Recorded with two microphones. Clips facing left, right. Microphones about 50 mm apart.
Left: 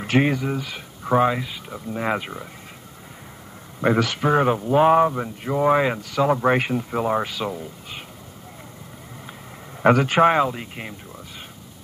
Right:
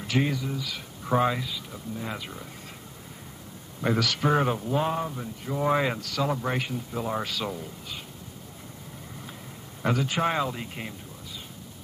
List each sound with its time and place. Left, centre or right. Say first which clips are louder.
0.0 s speech: left 7 dB; left
0.7 s speech: left 5 dB; left
2.0 s speech: left 12 dB; left
3.8 s speech: left 6 dB; left
4.2 s speech: left 5 dB; centre
4.7 s speech: left 16 dB; left
5.6 s speech: left 6 dB; centre
6.3 s speech: left 10 dB; left
7.1 s speech: left 4 dB; left
9.8 s speech: left 10 dB; left
10.2 s speech: left 9 dB; left